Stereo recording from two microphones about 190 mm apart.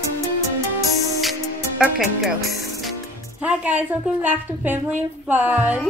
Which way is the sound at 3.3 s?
10° right (ahead or behind).